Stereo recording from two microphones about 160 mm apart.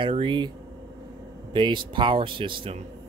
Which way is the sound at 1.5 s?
30° right (ahead or behind).